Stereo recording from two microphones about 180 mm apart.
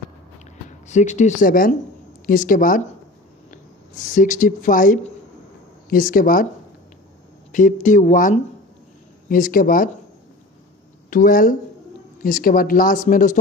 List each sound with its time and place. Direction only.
0.7 s speech: 40° left (ahead or behind)
4.1 s speech: 45° left (ahead or behind)
7.5 s speech: 45° left (ahead or behind)
11.1 s speech: 50° left (ahead or behind)